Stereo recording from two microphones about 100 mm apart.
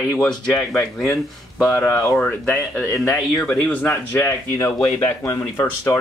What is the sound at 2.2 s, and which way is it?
Speech, 15° left (ahead or behind).